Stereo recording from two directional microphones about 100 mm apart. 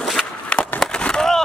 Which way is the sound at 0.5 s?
10° left (ahead or behind).